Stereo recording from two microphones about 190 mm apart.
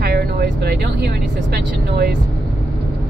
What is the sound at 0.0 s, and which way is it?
Speech, 55° right (ahead or behind).